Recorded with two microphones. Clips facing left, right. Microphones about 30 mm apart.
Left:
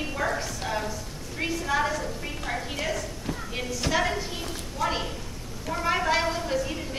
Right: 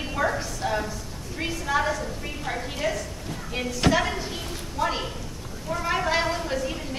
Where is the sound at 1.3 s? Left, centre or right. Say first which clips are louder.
Right 1 dB; centre.